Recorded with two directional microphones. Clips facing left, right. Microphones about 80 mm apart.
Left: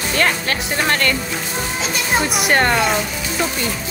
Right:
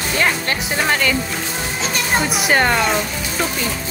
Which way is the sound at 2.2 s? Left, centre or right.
Centre.